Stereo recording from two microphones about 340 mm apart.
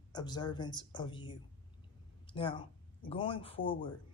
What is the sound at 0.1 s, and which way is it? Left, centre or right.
Speech, centre.